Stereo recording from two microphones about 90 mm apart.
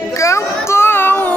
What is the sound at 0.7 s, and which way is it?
Child singing, 25° left (ahead or behind).